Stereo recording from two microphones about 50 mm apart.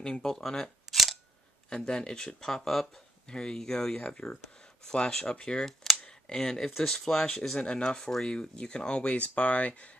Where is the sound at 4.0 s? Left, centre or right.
Left.